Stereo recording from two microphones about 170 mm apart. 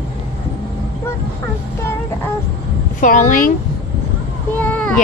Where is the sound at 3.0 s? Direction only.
50° left (ahead or behind).